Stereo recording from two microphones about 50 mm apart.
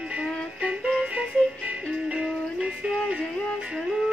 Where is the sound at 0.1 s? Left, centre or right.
Right.